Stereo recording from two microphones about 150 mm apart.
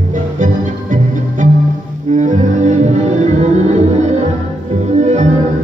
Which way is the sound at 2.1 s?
55° right (ahead or behind).